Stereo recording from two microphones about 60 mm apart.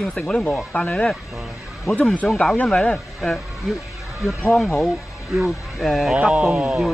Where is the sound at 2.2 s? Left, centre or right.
Left.